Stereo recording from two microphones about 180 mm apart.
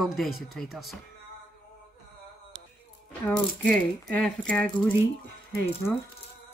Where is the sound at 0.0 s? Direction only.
Centre (ahead or behind).